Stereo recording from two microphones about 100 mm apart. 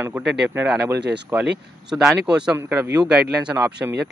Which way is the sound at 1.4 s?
5° right (ahead or behind).